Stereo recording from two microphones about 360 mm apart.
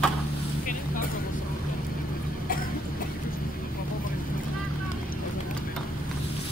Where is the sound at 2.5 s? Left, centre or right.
Left.